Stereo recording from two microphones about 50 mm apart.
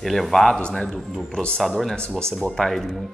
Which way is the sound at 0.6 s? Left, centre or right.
Left.